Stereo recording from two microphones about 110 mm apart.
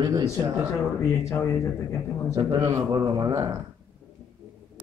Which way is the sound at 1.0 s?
25° left (ahead or behind).